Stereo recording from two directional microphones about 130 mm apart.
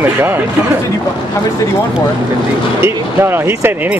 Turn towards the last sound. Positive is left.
turn(degrees=-15)  # may be behind; listen again after turning